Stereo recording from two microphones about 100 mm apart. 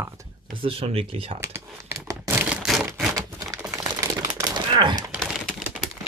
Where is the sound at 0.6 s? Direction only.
70° right (ahead or behind).